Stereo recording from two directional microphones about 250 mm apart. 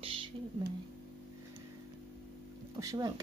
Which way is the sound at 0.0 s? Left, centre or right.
Right.